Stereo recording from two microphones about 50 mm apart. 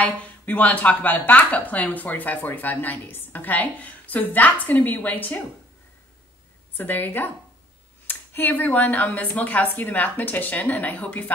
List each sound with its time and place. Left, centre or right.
0.0 s speech: left
6.8 s speech: left